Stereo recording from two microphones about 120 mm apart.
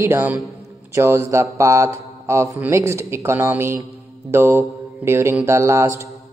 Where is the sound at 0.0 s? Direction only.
20° right (ahead or behind).